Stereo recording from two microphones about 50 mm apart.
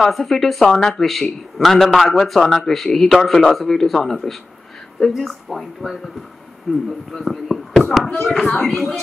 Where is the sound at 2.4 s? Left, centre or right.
Centre.